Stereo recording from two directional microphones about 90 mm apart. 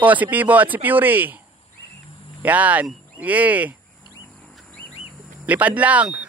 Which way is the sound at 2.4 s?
15° right (ahead or behind).